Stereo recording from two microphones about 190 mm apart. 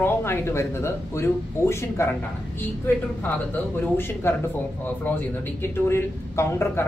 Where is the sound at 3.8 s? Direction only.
10° left (ahead or behind).